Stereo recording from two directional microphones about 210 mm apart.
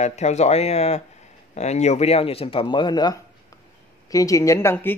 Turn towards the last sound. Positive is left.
turn(degrees=10)  # may be behind; listen again after turning